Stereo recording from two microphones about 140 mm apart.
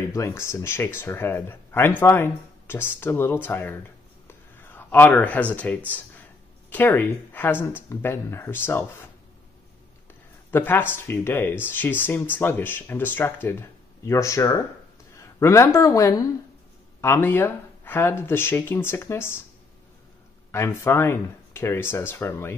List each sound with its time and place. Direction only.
0.1 s speech: 20° left (ahead or behind)
4.3 s a sound: 15° left (ahead or behind)
5.9 s speech: 10° left (ahead or behind)
10.5 s speech: 15° left (ahead or behind)
20.5 s speech: 20° left (ahead or behind)